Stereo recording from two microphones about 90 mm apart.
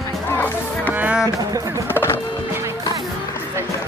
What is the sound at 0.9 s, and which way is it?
Speech, 20° right (ahead or behind).